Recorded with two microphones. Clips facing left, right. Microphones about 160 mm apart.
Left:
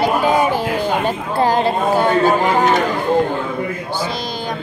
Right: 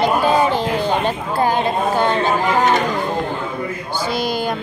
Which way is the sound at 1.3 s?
35° left (ahead or behind).